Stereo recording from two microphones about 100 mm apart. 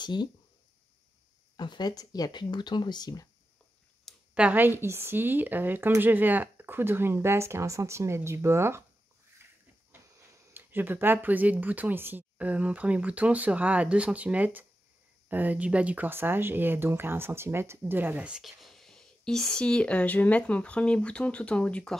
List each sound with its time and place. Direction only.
0.0 s speech: 45° left (ahead or behind)
1.6 s speech: 45° left (ahead or behind)
4.1 s a sound: 5° left (ahead or behind)
4.4 s speech: 15° right (ahead or behind)
10.5 s speech: 20° right (ahead or behind)
18.3 s speech: centre (ahead or behind)